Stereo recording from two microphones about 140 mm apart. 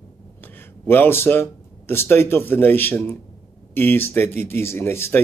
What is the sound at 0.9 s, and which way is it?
Speech, 15° left (ahead or behind).